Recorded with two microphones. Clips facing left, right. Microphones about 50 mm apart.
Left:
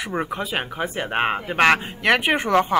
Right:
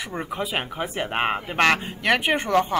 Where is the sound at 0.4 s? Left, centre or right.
Centre.